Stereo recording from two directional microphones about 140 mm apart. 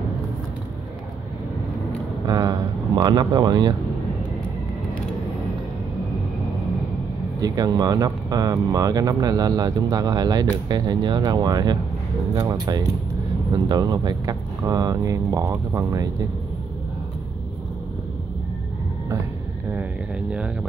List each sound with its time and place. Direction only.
2.2 s speech: 25° right (ahead or behind)
7.3 s speech: 25° right (ahead or behind)
19.7 s a sound: 10° right (ahead or behind)